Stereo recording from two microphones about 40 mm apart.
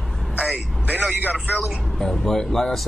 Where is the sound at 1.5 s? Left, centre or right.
Centre.